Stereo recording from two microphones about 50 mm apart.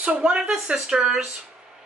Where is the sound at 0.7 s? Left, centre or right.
Centre.